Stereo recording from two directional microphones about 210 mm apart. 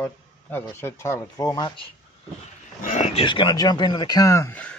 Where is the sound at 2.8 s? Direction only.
35° left (ahead or behind).